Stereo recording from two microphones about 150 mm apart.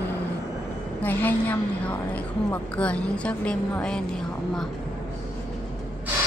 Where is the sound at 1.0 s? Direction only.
10° left (ahead or behind).